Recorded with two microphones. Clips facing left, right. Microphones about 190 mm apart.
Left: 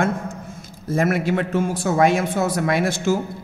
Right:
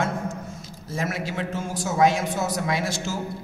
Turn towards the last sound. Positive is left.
turn(degrees=55)  # may be behind; listen again after turning